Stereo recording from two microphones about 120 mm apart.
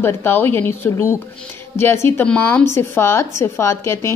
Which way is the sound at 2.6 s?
20° left (ahead or behind).